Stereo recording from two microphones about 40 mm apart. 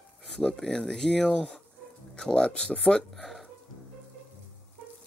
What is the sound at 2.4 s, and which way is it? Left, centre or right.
Speech, left.